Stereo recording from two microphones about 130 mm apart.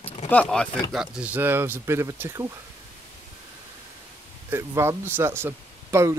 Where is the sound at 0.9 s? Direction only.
10° right (ahead or behind).